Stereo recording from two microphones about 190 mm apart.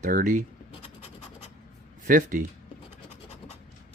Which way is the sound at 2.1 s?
45° right (ahead or behind).